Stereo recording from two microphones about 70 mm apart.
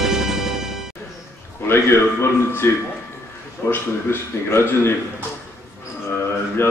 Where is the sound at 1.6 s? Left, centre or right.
Left.